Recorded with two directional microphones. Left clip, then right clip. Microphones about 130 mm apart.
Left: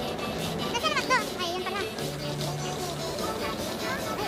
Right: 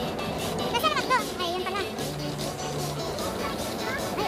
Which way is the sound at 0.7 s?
10° right (ahead or behind).